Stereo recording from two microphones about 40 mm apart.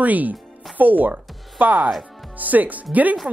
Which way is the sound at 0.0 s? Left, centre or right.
Right.